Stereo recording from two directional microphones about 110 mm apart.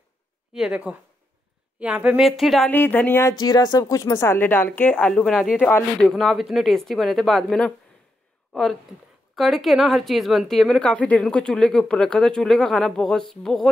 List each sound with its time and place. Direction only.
0.5 s speech: 5° right (ahead or behind)
2.1 s speech: centre (ahead or behind)
2.7 s speech: 15° left (ahead or behind)
3.2 s speech: 35° left (ahead or behind); by 7.7 s 5° left (ahead or behind)
9.3 s speech: centre (ahead or behind)